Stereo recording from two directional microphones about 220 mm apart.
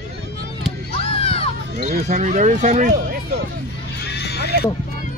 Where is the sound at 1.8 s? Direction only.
40° right (ahead or behind).